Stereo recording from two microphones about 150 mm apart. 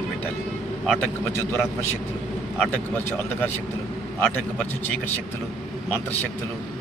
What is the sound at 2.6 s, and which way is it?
Speech, 10° left (ahead or behind).